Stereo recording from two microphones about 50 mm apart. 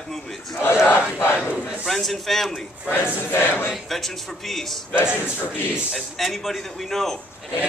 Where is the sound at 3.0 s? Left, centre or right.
Left.